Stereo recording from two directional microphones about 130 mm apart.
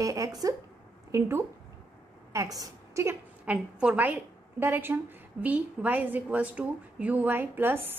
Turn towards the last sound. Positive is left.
turn(degrees=-15)  # may be behind; listen again after turning